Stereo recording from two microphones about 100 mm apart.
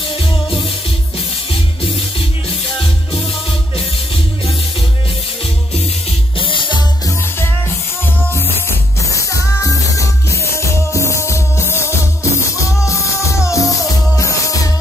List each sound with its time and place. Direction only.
6.4 s music: 55° left (ahead or behind)
8.6 s music: 30° left (ahead or behind)